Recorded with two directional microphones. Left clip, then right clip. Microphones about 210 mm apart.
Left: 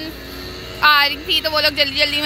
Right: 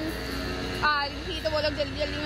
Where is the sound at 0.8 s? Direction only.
5° left (ahead or behind).